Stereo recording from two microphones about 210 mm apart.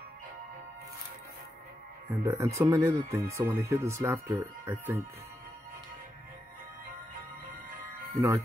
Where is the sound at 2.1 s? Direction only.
10° right (ahead or behind).